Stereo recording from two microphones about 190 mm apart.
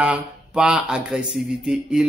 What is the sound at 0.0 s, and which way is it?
Speech, 5° right (ahead or behind).